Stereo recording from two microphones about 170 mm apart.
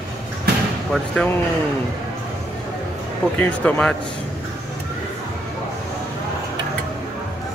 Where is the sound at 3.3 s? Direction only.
10° left (ahead or behind).